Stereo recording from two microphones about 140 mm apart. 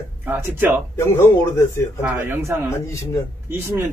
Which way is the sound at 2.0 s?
15° right (ahead or behind).